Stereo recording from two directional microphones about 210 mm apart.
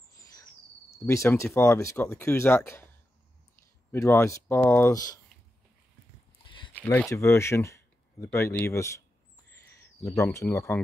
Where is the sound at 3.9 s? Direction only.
10° left (ahead or behind).